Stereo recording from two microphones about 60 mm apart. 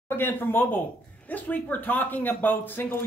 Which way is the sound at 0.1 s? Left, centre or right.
Left.